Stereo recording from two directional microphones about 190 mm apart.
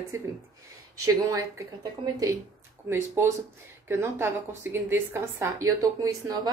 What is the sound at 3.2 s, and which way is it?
A woman's voice, 15° right (ahead or behind).